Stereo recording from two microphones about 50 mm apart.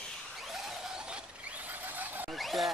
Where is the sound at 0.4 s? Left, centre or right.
Centre; by 2.3 s right.